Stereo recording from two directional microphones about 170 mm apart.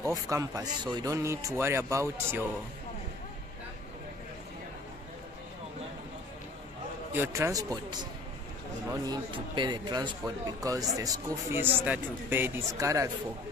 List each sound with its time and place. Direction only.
0.0 s speech: 20° right (ahead or behind)
7.1 s speech: 15° right (ahead or behind)